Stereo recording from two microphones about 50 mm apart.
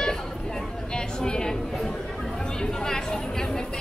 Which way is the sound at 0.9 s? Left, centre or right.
Centre.